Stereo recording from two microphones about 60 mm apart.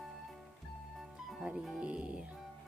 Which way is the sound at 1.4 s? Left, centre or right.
Centre.